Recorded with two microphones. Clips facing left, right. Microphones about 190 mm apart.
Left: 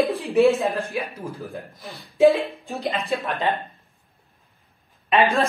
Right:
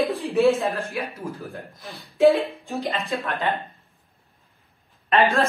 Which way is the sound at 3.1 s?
15° left (ahead or behind).